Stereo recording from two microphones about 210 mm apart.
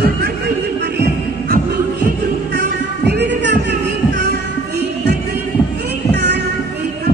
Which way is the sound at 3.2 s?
55° right (ahead or behind).